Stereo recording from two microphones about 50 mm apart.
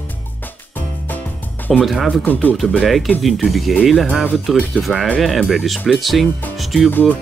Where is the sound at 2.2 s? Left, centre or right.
Left.